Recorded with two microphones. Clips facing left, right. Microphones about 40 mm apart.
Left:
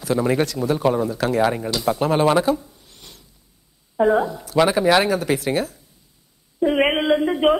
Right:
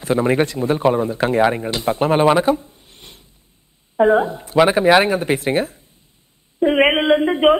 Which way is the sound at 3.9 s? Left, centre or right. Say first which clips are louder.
Right 3 dB; right.